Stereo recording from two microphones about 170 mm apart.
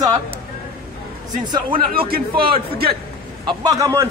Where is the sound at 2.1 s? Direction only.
60° right (ahead or behind).